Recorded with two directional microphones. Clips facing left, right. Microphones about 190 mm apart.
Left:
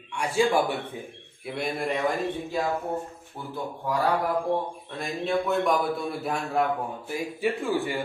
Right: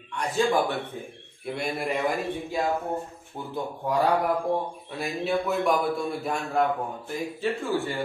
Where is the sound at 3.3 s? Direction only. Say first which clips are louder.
Right 2 dB; 20° right (ahead or behind).